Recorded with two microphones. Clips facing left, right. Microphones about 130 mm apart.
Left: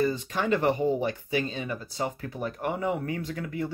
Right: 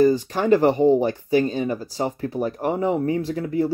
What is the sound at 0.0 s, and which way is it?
Speech, 35° right (ahead or behind).